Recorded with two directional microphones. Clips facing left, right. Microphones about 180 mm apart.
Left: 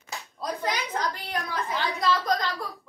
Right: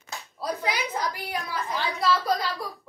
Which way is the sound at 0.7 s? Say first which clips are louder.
Left 1 dB; 10° right (ahead or behind).